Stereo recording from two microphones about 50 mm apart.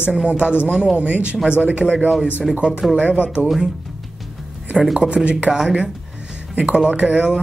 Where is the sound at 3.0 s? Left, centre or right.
Right.